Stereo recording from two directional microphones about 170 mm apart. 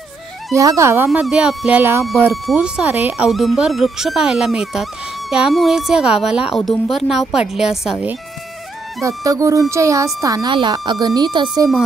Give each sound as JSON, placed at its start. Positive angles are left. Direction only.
{"t": 0.5, "sound": "speech", "side_deg": -20}
{"t": 1.1, "sound": "a woman's voice", "side_deg": -5}
{"t": 9.0, "sound": "speech", "side_deg": -20}